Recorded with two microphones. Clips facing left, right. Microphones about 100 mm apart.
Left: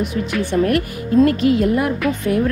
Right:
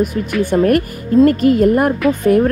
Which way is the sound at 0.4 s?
50° right (ahead or behind).